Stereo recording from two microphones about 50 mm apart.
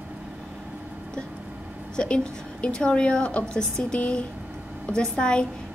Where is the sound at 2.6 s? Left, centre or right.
Centre.